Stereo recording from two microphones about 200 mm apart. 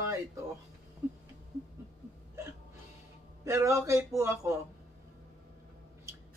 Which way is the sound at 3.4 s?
15° right (ahead or behind).